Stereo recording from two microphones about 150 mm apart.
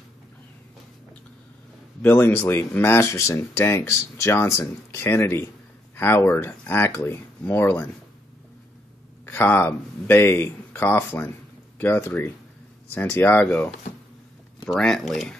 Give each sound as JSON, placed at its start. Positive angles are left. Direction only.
{"t": 2.0, "sound": "speech", "side_deg": 15}
{"t": 9.2, "sound": "speech", "side_deg": 15}